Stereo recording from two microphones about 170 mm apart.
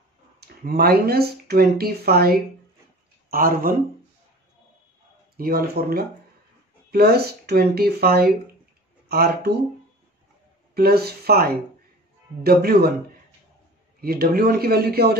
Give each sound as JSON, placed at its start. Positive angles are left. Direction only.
{"t": 0.4, "sound": "speech", "side_deg": -65}
{"t": 5.4, "sound": "speech", "side_deg": -60}
{"t": 10.7, "sound": "speech", "side_deg": -65}
{"t": 14.0, "sound": "speech", "side_deg": -60}